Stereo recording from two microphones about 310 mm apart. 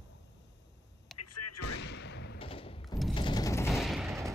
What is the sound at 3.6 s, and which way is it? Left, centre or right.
Gunshot, centre.